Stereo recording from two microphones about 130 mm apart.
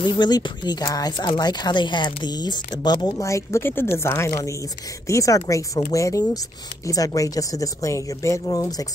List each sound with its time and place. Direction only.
0.0 s speech: 35° left (ahead or behind)